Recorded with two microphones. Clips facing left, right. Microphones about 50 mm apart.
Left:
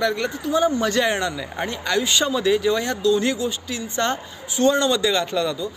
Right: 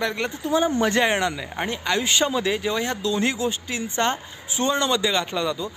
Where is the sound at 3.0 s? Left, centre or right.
Right.